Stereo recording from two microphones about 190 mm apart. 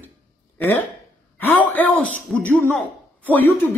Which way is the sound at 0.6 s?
10° left (ahead or behind).